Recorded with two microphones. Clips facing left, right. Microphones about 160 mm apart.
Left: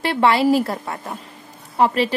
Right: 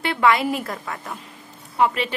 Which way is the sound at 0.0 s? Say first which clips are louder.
Left 3 dB; 35° left (ahead or behind).